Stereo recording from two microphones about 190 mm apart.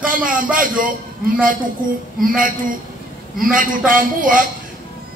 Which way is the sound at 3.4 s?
45° right (ahead or behind).